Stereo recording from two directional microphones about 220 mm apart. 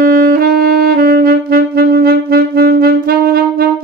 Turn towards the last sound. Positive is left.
turn(degrees=-45)  # may be behind; listen again after turning